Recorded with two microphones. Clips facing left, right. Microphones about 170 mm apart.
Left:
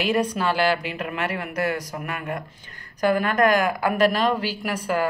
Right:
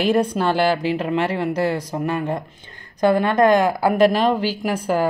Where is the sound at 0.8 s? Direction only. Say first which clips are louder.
Right 7 dB; 30° right (ahead or behind).